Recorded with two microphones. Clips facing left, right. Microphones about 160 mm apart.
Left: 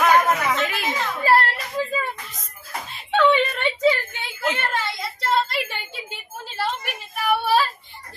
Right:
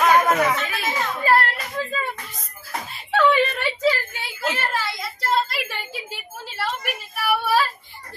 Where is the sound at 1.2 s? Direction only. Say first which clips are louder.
Left 1 dB; 30° left (ahead or behind).